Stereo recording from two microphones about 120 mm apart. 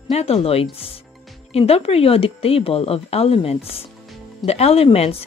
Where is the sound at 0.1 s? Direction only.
55° left (ahead or behind).